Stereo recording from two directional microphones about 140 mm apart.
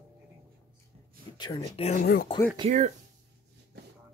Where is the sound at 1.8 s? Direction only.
60° left (ahead or behind).